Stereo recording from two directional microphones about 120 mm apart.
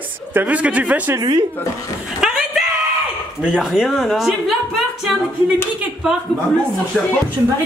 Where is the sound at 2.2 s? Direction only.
Centre (ahead or behind).